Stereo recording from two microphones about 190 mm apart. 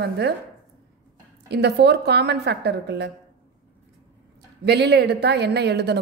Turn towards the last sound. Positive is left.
turn(degrees=-60)  # may be behind; listen again after turning